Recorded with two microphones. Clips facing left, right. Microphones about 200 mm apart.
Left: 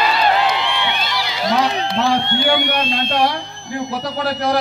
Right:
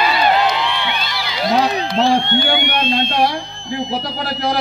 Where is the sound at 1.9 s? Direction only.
35° right (ahead or behind).